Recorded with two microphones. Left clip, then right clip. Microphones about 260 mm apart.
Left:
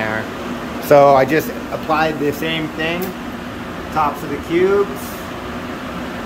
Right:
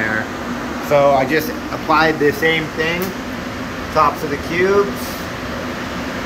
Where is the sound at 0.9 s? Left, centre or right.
Centre.